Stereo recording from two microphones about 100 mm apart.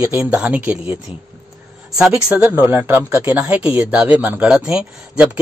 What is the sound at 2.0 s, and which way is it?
A man's voice, 10° right (ahead or behind).